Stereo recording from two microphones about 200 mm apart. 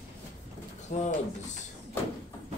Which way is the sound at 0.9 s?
35° left (ahead or behind).